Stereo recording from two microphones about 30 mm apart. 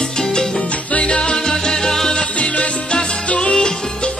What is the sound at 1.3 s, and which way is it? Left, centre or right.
Salsa music, centre.